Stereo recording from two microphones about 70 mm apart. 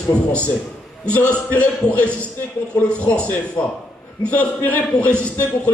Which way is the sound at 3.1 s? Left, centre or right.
Centre.